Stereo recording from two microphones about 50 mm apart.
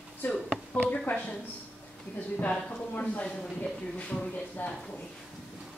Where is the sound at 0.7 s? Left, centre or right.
Left.